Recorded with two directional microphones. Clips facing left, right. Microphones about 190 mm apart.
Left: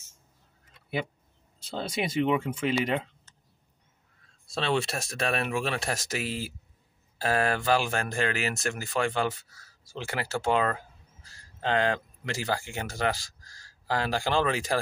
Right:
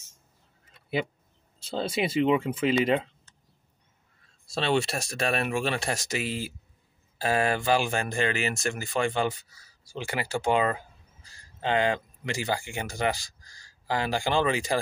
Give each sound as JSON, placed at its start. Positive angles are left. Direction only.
{"t": 1.8, "sound": "speech", "side_deg": -30}
{"t": 4.5, "sound": "speech", "side_deg": 0}